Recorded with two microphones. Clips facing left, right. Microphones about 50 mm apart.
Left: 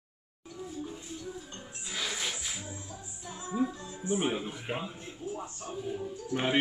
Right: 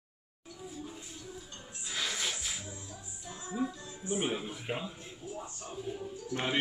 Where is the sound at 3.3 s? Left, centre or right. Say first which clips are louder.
Left 4 dB; left.